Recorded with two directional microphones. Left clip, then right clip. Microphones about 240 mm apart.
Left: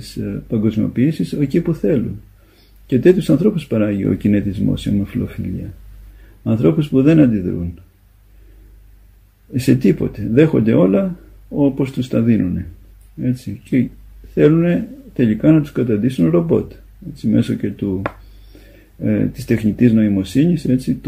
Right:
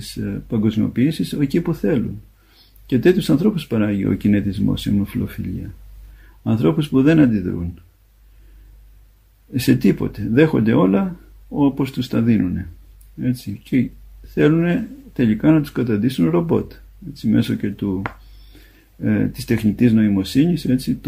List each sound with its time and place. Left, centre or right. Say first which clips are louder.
0.2 s speech: left 2 dB; right
6.4 s speech: left 3 dB; right
9.5 s speech: left 2 dB; right